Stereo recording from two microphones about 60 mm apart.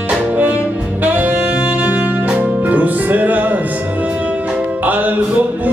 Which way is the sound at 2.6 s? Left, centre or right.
Right.